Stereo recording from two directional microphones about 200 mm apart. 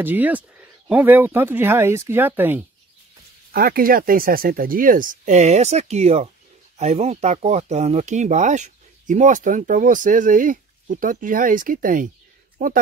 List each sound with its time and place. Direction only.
0.0 s speech: 10° right (ahead or behind)
3.5 s speech: 45° right (ahead or behind)